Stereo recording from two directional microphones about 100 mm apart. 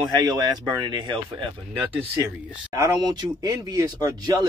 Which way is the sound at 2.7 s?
40° right (ahead or behind).